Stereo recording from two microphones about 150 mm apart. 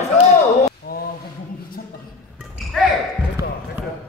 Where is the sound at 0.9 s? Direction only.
90° left.